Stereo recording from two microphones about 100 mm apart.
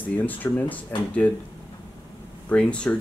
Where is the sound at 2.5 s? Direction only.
10° left (ahead or behind).